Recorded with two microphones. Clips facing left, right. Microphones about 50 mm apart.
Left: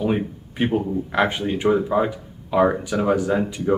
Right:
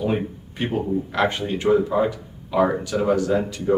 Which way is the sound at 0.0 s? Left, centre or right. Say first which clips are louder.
Left 1 dB; centre.